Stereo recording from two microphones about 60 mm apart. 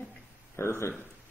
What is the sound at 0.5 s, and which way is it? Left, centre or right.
Speech, left.